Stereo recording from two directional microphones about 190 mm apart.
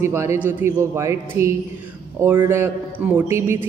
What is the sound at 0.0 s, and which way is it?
A woman's voice, 15° right (ahead or behind).